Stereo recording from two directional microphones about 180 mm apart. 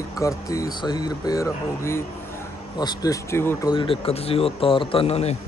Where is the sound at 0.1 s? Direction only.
20° left (ahead or behind).